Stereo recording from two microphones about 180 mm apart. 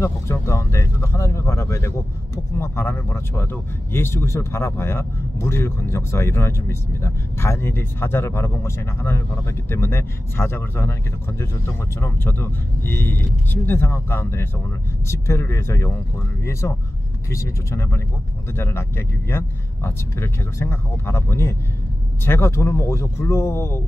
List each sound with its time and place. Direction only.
0.0 s speech: 15° left (ahead or behind)